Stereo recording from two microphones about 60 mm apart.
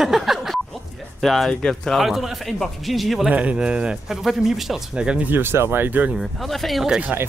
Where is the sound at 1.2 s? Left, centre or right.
Centre.